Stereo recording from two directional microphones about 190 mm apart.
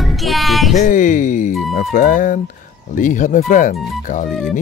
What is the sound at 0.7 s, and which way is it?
Speech, 45° left (ahead or behind).